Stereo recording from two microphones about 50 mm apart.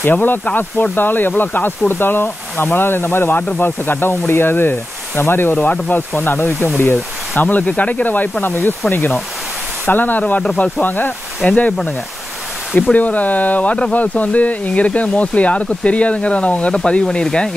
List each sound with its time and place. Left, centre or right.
0.1 s speech: left
3.3 s speech: left
5.6 s speech: left
7.4 s speech: left
9.8 s speech: left
11.4 s speech: left
12.9 s speech: left
16.7 s speech: centre